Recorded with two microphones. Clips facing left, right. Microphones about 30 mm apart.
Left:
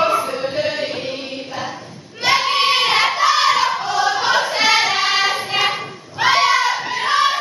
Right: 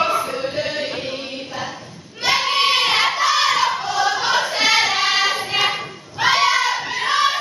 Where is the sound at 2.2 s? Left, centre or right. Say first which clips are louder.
Left 2 dB; centre.